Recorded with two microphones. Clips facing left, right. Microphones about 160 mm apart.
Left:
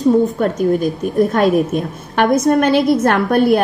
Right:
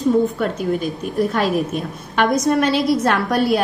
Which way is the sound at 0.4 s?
45° left (ahead or behind).